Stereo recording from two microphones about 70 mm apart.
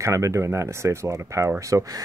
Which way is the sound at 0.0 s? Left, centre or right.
Right.